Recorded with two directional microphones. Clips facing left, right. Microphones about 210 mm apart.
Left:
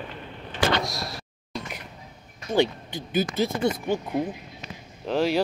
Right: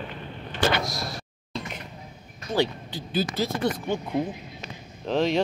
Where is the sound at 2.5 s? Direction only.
15° left (ahead or behind).